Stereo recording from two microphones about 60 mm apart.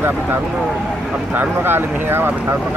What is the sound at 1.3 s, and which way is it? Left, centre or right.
Speech, right.